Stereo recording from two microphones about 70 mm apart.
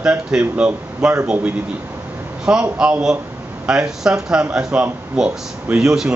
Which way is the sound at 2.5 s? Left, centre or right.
Centre.